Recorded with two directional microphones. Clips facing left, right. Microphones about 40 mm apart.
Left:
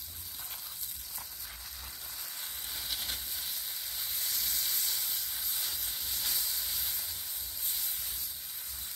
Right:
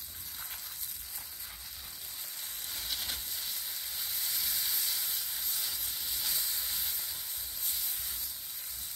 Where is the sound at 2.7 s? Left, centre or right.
Centre.